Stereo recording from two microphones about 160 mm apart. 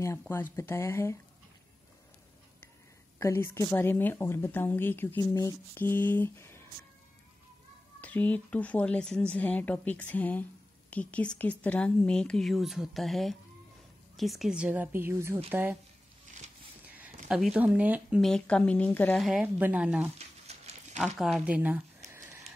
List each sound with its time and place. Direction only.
0.3 s speech: 15° left (ahead or behind)
3.2 s speech: 15° left (ahead or behind)
8.0 s a woman's voice: 10° left (ahead or behind); by 15.8 s 10° right (ahead or behind)
16.8 s a sound: 10° right (ahead or behind)
17.3 s a woman's voice: 5° right (ahead or behind)
18.2 s speech: 5° left (ahead or behind)
19.2 s a woman's voice: 5° right (ahead or behind)
20.2 s a sound: 40° right (ahead or behind)
21.0 s a woman's voice: 5° right (ahead or behind)